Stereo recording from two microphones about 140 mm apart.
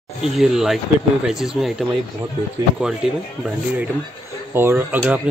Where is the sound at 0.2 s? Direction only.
5° right (ahead or behind).